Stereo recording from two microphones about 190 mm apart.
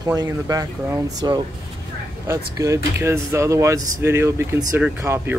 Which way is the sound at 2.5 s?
15° right (ahead or behind).